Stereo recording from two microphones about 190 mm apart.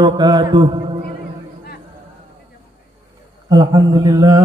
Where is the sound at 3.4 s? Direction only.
20° right (ahead or behind).